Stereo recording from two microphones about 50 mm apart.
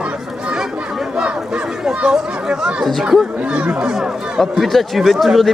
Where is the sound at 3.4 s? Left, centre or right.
Right.